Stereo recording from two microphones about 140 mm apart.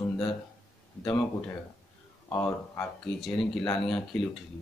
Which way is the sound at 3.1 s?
Centre (ahead or behind).